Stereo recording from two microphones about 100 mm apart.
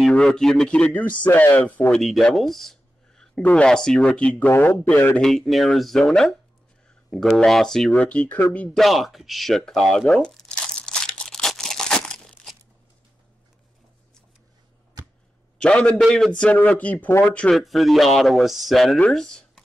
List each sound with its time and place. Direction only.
0.0 s speech: 5° left (ahead or behind)
2.0 s a man's voice: centre (ahead or behind)
5.2 s speech: centre (ahead or behind)
8.7 s crumpling: centre (ahead or behind)
15.6 s speech: 10° left (ahead or behind)
16.3 s speech: 10° left (ahead or behind)